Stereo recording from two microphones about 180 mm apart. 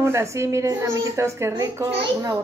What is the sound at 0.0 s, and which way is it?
A woman's voice, 15° right (ahead or behind).